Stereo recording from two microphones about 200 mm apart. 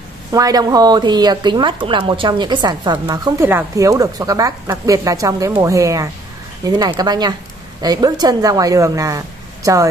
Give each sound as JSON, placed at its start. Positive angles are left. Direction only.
{"t": 0.3, "sound": "speech", "side_deg": -20}